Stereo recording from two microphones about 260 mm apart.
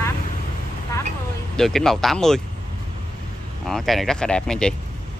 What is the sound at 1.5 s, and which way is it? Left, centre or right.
Speech, centre.